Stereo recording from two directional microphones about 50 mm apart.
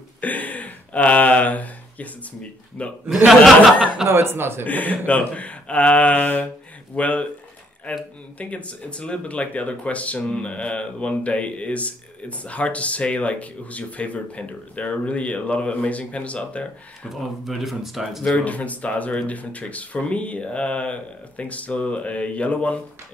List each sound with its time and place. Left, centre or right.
0.2 s a sound: left
2.8 s speech: left
4.1 s a man's voice: right
4.6 s speech: left
8.4 s speech: left
17.1 s speech: centre
18.2 s speech: left